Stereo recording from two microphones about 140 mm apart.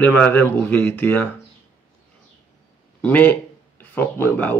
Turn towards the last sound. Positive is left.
turn(degrees=15)  # may be behind; listen again after turning